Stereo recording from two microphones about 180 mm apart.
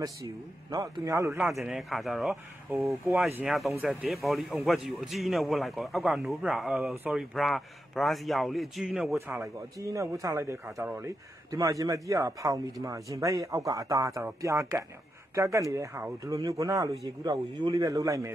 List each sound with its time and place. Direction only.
0.0 s a man's voice: 20° right (ahead or behind)
1.4 s a man's voice: centre (ahead or behind)
3.4 s a man's voice: centre (ahead or behind)
9.4 s a man's voice: 15° right (ahead or behind)